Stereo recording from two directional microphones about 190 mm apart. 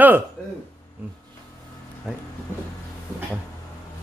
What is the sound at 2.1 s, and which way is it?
Speech, 5° right (ahead or behind).